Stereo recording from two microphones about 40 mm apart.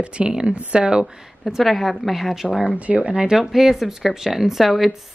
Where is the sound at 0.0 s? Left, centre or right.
Right.